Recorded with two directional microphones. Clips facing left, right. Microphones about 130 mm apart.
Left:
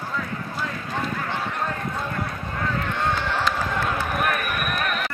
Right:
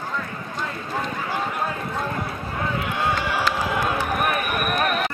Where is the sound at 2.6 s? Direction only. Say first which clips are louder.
Right 1 dB; 10° right (ahead or behind).